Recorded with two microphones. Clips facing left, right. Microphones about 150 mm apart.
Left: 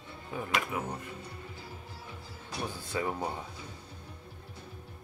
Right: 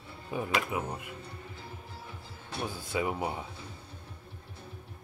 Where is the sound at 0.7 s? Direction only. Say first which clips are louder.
Right 1 dB; 10° right (ahead or behind).